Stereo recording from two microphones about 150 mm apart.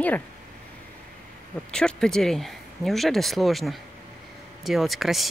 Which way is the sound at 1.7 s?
5° left (ahead or behind).